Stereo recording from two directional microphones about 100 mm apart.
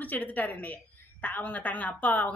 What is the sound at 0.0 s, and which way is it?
A woman's voice, 15° left (ahead or behind).